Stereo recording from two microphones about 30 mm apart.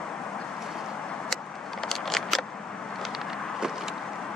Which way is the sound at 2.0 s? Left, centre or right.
Centre.